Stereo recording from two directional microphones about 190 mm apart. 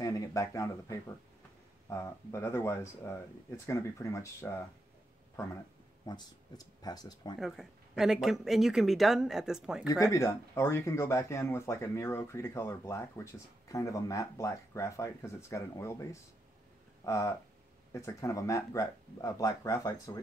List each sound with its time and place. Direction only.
0.0 s speech: 15° left (ahead or behind)
6.0 s speech: 20° left (ahead or behind)
7.3 s speech: centre (ahead or behind)
9.8 s speech: 15° left (ahead or behind)